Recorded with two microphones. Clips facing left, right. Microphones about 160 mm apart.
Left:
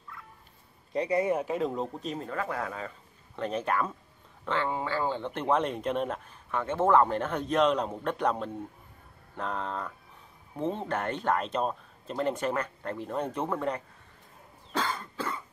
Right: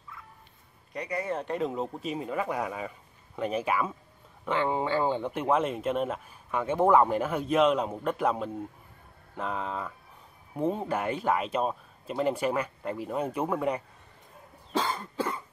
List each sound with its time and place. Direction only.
0.1 s turkey: centre (ahead or behind)
0.9 s speech: 25° left (ahead or behind)
1.3 s speech: 5° left (ahead or behind)
4.5 s speech: 20° right (ahead or behind)
14.9 s cough: 10° right (ahead or behind)